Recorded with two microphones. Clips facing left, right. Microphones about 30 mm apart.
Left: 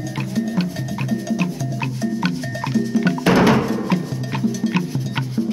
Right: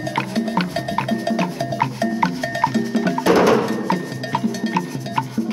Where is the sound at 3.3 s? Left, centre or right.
Left.